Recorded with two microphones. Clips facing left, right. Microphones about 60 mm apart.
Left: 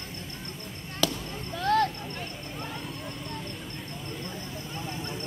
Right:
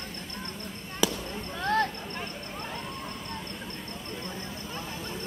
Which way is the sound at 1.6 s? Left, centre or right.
Right.